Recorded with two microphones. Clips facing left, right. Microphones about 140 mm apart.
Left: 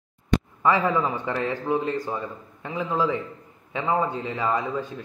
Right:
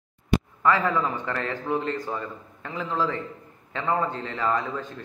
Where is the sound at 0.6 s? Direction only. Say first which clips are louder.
Left 2 dB; 15° left (ahead or behind).